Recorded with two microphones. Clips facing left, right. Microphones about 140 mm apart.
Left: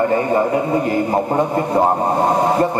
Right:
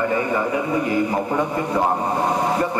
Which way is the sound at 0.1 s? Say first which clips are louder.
Left 5 dB; 40° left (ahead or behind).